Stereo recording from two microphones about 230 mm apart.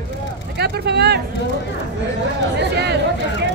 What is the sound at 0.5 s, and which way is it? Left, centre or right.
Speech, right.